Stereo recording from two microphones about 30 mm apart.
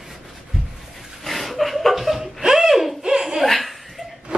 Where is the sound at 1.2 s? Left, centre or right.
Centre.